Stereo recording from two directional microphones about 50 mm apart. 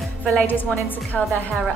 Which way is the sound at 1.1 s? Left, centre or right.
Centre.